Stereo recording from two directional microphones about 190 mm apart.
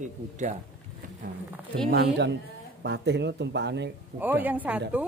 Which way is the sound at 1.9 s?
60° right (ahead or behind).